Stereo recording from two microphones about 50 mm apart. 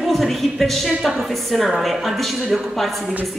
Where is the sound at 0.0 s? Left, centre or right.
Centre.